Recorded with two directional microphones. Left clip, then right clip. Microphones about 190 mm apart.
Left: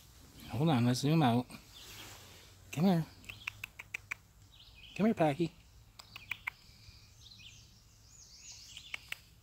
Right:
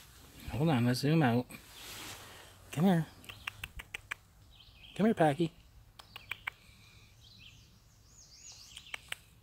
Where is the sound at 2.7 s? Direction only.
5° right (ahead or behind).